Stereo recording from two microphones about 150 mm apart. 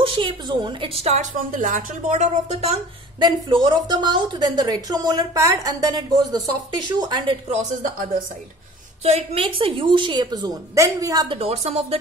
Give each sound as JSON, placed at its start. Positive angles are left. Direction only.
{"t": 0.0, "sound": "a woman's voice", "side_deg": -30}
{"t": 1.3, "sound": "speech", "side_deg": -60}
{"t": 3.2, "sound": "a woman's voice", "side_deg": -30}
{"t": 7.5, "sound": "speech", "side_deg": -65}
{"t": 9.0, "sound": "a woman's voice", "side_deg": -45}
{"t": 11.3, "sound": "a woman's voice", "side_deg": -40}